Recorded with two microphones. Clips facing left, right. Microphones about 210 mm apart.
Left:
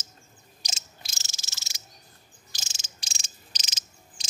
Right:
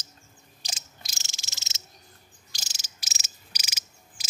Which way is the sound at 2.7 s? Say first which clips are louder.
Left 1 dB; 25° left (ahead or behind).